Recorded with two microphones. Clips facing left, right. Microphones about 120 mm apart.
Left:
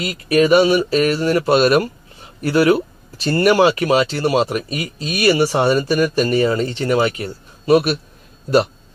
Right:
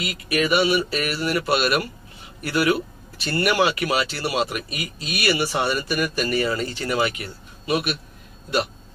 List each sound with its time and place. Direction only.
0.0 s speech: 35° left (ahead or behind)